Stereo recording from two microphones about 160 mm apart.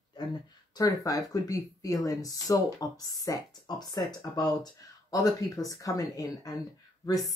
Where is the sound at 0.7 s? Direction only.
25° left (ahead or behind).